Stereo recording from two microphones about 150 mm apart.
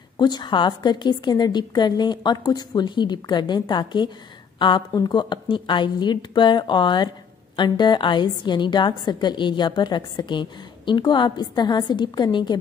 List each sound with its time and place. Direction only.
0.2 s a woman's voice: 30° left (ahead or behind)